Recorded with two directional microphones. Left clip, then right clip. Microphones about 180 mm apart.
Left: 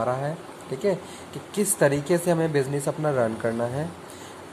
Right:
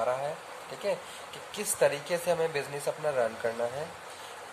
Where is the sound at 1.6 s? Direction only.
20° left (ahead or behind).